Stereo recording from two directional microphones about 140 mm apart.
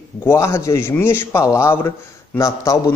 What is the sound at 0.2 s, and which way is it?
A man's voice, 20° left (ahead or behind).